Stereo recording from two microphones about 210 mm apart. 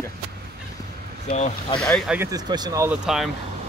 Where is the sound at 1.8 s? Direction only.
Centre (ahead or behind).